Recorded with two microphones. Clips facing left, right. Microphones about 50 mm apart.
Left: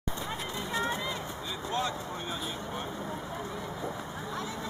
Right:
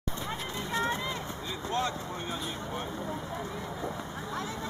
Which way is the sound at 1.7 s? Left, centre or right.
Right.